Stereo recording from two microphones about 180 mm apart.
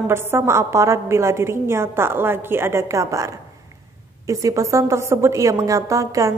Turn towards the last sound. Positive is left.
turn(degrees=-20)  # may be behind; listen again after turning